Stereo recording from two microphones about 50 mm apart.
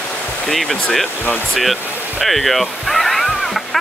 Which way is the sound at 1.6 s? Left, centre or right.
Centre.